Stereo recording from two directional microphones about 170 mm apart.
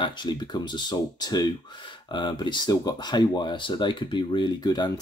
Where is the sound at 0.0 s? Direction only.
25° left (ahead or behind).